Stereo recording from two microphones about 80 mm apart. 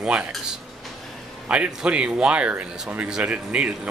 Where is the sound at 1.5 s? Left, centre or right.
Centre.